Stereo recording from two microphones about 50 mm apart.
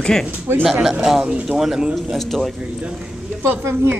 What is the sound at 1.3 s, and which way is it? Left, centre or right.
Speech, centre.